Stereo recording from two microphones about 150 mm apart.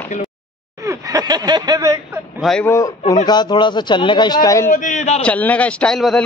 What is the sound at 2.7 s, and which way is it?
Speech, 20° left (ahead or behind).